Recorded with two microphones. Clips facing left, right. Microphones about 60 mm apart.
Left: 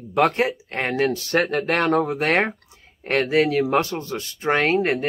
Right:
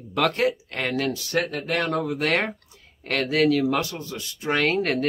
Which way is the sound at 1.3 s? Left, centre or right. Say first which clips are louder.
Left 5 dB; left.